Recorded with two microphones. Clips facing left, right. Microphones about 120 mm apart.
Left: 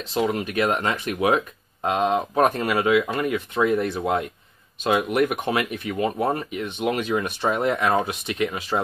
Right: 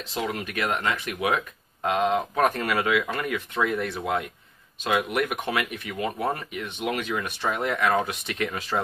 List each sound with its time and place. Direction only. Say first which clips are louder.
0.1 s speech: left 6 dB; 25° left (ahead or behind)
8.0 s speech: left 3 dB; 15° left (ahead or behind)